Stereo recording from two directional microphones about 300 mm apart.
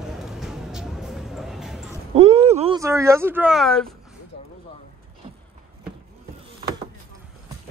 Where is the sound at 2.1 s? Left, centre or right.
Right; by 3.8 s centre.